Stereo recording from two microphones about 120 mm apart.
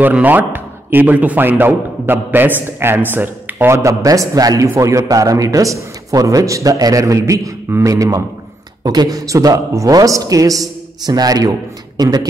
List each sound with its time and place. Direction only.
0.0 s a man's voice: 15° right (ahead or behind); by 12.3 s 35° right (ahead or behind)